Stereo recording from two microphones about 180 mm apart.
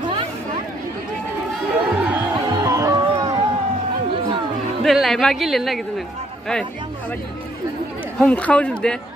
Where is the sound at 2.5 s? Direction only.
15° right (ahead or behind).